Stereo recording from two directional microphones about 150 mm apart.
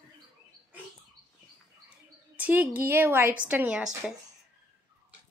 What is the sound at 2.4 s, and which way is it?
A woman's voice, 10° right (ahead or behind).